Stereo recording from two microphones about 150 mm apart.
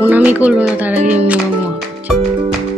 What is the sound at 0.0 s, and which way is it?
Speech, 10° right (ahead or behind).